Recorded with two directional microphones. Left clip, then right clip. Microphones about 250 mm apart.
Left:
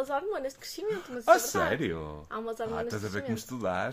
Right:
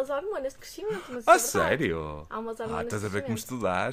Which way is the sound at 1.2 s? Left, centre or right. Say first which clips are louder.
Right 3 dB; right.